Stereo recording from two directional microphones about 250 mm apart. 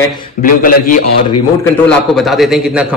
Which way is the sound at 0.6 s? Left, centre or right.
Left.